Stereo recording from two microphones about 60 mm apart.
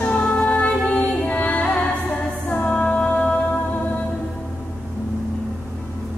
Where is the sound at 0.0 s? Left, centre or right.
Left.